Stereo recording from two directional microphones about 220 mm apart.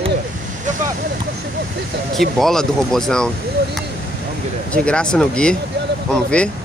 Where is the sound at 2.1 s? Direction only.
Centre (ahead or behind).